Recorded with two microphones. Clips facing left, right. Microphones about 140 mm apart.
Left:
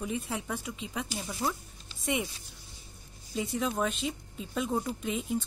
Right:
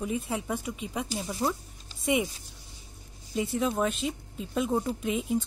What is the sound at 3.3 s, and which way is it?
Speech, 5° right (ahead or behind).